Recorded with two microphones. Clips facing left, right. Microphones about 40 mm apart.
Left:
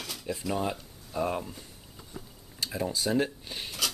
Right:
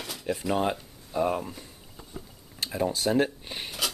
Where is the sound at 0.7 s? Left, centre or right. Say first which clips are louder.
Right 4 dB; centre.